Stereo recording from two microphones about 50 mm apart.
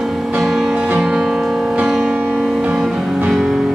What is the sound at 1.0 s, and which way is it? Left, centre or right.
Music, centre.